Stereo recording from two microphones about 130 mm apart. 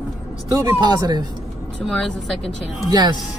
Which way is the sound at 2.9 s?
30° right (ahead or behind).